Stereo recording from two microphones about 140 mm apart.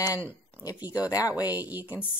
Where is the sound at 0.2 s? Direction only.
15° right (ahead or behind).